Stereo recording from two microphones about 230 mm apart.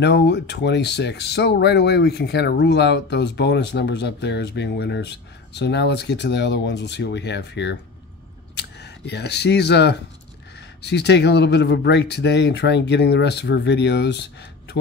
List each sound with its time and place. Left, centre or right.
0.0 s speech: left